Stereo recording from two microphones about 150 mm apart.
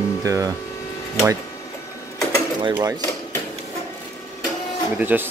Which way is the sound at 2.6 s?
30° right (ahead or behind).